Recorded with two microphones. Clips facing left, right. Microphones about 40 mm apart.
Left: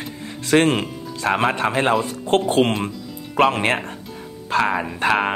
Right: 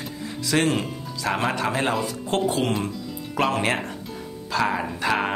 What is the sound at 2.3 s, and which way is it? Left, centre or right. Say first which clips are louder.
Speech: left 6 dB; left.